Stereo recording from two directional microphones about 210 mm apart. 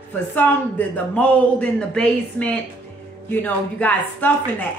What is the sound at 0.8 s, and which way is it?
A woman's voice, 10° left (ahead or behind).